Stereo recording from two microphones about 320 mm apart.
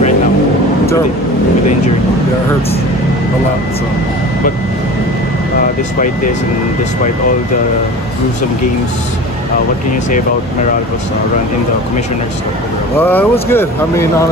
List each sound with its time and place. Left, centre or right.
5.9 s speech: left
13.0 s speech: centre